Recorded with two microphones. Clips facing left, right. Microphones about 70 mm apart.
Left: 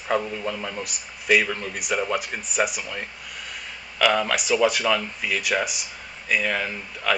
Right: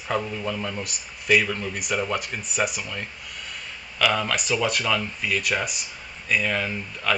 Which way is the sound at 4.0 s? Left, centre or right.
Centre.